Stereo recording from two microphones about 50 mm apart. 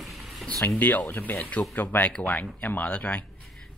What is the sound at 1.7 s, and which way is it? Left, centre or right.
Speech, left.